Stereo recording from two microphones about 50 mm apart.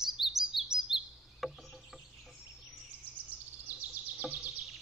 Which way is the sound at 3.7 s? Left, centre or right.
Right.